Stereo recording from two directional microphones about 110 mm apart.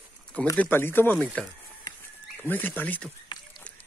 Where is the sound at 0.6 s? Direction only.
20° left (ahead or behind).